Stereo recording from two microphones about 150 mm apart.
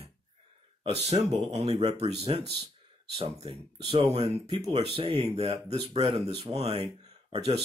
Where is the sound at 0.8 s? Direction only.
40° right (ahead or behind).